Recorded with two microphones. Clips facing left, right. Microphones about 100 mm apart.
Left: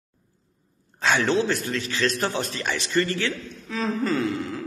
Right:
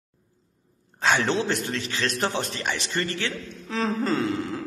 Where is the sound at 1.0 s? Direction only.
30° right (ahead or behind).